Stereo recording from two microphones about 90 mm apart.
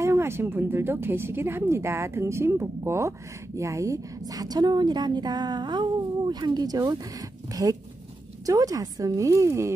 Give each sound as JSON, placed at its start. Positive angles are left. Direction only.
{"t": 0.0, "sound": "speech", "side_deg": -30}